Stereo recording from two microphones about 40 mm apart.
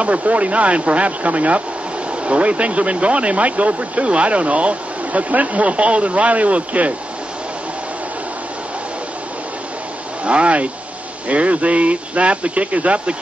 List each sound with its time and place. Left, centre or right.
0.0 s speech: right
10.2 s speech: right